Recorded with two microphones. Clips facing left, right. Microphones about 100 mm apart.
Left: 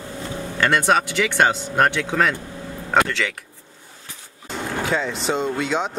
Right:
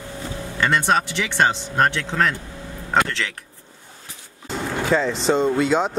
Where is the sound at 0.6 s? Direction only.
Centre (ahead or behind).